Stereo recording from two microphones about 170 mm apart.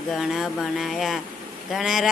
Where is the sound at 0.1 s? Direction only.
Centre (ahead or behind).